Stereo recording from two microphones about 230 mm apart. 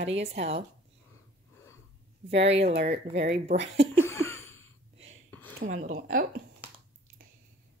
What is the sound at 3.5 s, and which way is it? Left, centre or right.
Speech, right.